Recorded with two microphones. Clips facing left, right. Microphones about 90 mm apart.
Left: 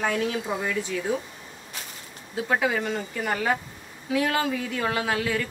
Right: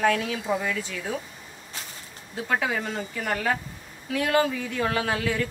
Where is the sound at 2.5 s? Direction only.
5° left (ahead or behind).